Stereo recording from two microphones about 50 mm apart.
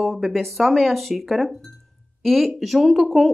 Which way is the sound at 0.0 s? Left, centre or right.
Centre.